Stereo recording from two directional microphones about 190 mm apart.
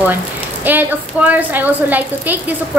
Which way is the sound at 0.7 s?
10° right (ahead or behind).